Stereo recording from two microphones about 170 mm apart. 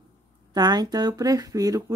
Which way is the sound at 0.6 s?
25° right (ahead or behind).